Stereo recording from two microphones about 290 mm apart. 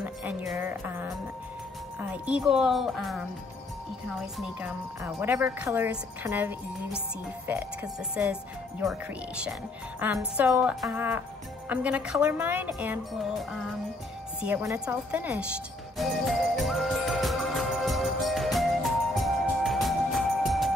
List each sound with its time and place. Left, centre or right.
0.0 s music: centre
2.0 s speech: centre
4.4 s speech: centre
16.0 s music: centre